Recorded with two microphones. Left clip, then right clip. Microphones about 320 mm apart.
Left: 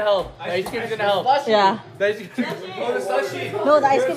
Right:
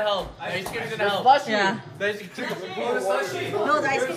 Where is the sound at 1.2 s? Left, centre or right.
Centre.